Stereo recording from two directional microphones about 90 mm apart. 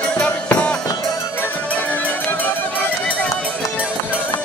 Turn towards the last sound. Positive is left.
turn(degrees=20)  # may be behind; listen again after turning